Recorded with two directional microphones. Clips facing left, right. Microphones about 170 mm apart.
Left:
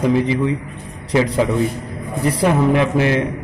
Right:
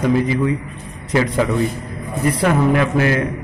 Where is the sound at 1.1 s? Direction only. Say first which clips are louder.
Left 1 dB; 15° left (ahead or behind).